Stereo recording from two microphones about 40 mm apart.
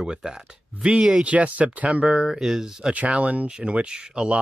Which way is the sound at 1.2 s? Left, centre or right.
Right.